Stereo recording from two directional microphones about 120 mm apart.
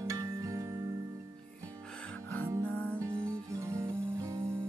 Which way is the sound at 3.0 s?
25° right (ahead or behind).